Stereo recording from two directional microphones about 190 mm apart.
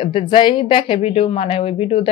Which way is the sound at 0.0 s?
25° left (ahead or behind).